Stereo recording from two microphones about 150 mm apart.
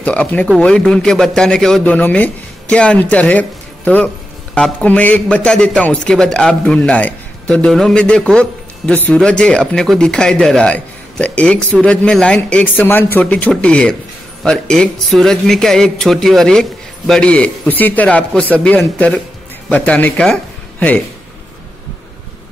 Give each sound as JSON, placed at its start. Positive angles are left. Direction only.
{"t": 0.0, "sound": "a man's voice", "side_deg": 10}